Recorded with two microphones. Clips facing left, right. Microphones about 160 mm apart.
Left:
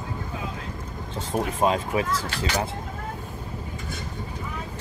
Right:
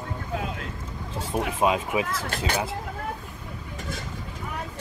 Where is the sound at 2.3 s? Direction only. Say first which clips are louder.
Even; 50° right (ahead or behind).